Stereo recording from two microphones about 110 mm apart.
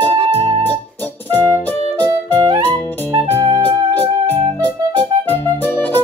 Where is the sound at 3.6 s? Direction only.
15° left (ahead or behind).